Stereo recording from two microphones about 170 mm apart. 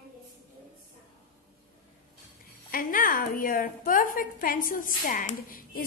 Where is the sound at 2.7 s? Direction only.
55° left (ahead or behind).